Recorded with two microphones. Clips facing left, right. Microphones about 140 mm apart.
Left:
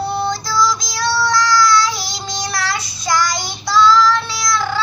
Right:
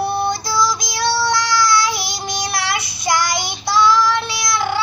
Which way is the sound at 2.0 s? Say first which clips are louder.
Right 1 dB; 65° right (ahead or behind).